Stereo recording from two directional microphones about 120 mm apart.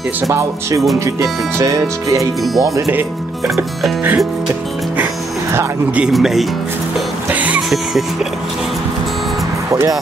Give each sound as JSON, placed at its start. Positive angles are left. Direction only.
{"t": 0.2, "sound": "music", "side_deg": -20}
{"t": 3.4, "sound": "music", "side_deg": 0}
{"t": 5.9, "sound": "music", "side_deg": -5}
{"t": 7.2, "sound": "music", "side_deg": -15}
{"t": 9.7, "sound": "speech", "side_deg": -25}